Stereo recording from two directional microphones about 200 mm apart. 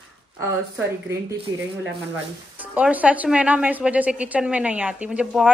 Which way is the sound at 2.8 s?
5° right (ahead or behind).